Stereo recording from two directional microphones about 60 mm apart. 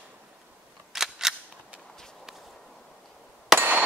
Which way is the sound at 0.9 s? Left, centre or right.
Centre.